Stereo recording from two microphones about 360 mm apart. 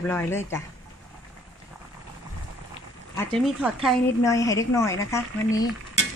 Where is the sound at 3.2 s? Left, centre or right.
Centre.